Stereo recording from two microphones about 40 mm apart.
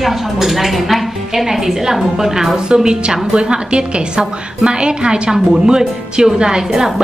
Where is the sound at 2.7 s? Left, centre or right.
Centre.